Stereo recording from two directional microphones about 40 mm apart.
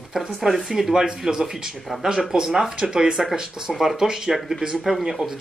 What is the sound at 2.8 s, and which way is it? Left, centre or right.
Speech, centre.